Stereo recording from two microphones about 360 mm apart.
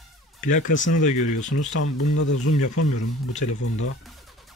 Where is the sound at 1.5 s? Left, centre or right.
Left.